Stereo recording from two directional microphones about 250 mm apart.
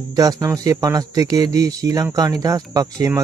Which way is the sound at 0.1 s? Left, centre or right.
Centre.